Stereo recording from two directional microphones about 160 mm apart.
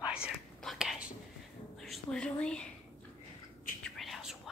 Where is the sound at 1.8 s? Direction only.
5° left (ahead or behind).